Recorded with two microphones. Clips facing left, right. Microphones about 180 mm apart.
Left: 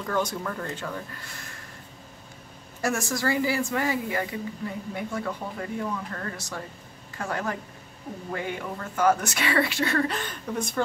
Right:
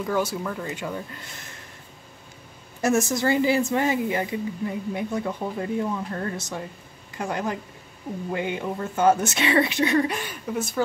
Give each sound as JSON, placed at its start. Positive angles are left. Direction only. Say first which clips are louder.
{"t": 0.0, "sound": "speech", "louder": "right 3 dB", "side_deg": -10}
{"t": 2.8, "sound": "speech", "louder": "right 5 dB", "side_deg": -20}